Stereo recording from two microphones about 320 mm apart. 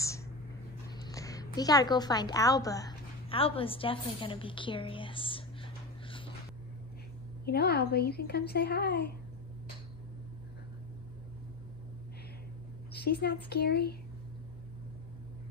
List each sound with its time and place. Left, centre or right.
1.0 s a woman's voice: centre
7.4 s a woman's voice: left
12.9 s a woman's voice: left